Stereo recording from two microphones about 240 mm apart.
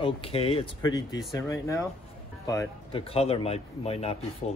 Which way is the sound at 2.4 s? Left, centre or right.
Centre.